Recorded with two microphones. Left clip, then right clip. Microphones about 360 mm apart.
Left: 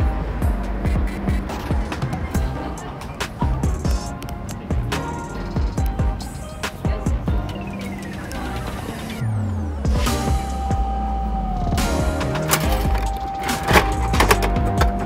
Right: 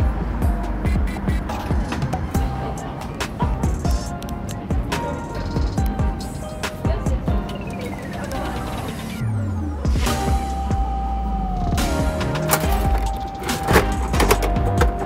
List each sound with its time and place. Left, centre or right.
1.9 s music: centre
11.6 s music: centre